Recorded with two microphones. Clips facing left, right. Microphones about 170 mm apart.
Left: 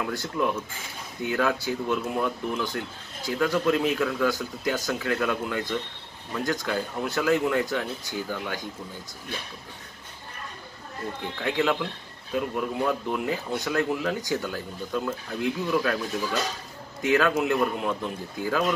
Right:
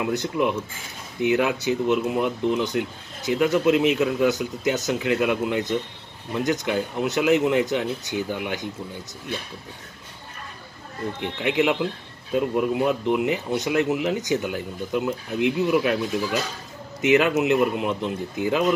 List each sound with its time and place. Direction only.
0.0 s speech: 20° right (ahead or behind)
11.1 s speech: 20° right (ahead or behind)